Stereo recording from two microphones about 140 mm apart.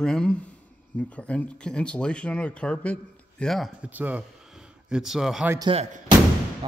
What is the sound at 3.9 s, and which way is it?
Speech, 10° right (ahead or behind).